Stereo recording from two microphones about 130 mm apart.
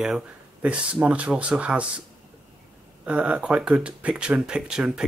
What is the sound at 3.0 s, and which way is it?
Speech, 10° right (ahead or behind).